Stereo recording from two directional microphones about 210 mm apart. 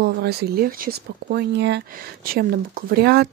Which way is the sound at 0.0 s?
50° right (ahead or behind).